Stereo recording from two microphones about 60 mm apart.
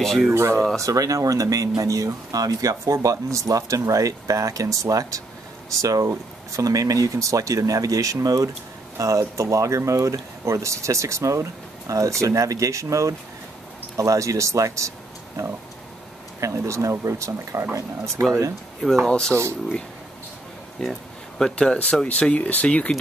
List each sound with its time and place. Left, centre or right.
0.0 s speech: centre
0.3 s speech: right
0.7 s speech: right
8.9 s speech: right
16.3 s speech: right
18.8 s speech: centre
20.8 s speech: centre